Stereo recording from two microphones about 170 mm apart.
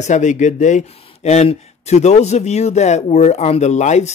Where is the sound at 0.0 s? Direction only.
45° left (ahead or behind).